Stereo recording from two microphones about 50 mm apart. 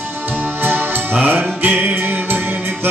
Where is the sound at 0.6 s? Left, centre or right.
Right.